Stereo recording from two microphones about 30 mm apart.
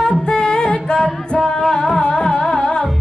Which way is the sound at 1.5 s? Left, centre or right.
Centre.